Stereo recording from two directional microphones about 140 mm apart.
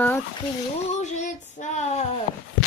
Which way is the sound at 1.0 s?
60° left (ahead or behind).